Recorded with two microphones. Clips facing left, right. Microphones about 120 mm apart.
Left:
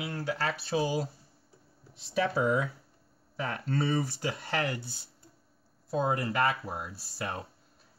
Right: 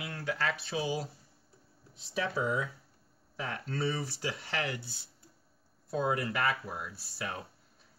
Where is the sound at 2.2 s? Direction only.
65° left (ahead or behind).